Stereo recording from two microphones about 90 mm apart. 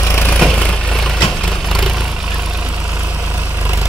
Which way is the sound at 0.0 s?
30° left (ahead or behind).